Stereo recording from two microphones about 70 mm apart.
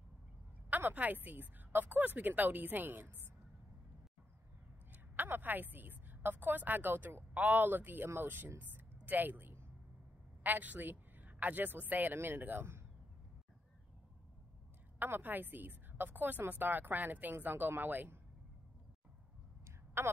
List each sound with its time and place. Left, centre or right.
0.7 s a woman's voice: right
4.9 s a woman's voice: right
8.5 s a sound: right
10.4 s speech: right
15.0 s a woman's voice: right
19.6 s a sound: right